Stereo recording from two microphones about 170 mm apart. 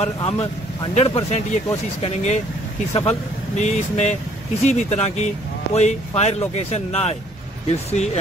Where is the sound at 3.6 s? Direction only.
40° left (ahead or behind).